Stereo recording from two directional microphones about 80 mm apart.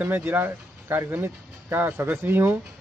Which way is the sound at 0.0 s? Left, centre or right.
Right.